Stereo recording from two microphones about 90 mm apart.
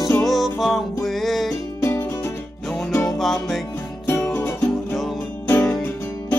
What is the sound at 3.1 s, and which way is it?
Music, centre (ahead or behind).